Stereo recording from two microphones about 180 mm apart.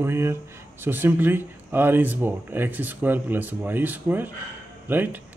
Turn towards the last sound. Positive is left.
turn(degrees=-10)  # may be behind; listen again after turning